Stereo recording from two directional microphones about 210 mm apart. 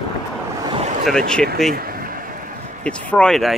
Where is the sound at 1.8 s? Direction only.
45° right (ahead or behind).